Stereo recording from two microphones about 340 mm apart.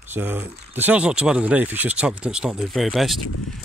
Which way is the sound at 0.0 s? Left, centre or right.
Centre.